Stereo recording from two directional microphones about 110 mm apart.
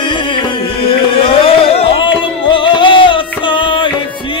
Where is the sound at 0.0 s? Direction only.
45° left (ahead or behind).